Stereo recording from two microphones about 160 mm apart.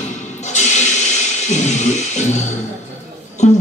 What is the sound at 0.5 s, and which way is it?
Music, 45° left (ahead or behind).